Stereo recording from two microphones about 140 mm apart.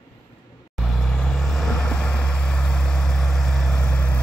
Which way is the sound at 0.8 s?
Centre (ahead or behind).